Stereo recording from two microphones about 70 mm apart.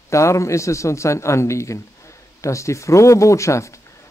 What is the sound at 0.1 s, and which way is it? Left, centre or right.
Speech, left.